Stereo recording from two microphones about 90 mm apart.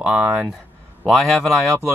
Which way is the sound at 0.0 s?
10° right (ahead or behind).